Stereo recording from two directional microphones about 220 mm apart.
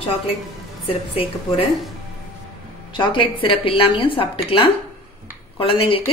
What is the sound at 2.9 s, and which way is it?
A woman's voice, 20° left (ahead or behind).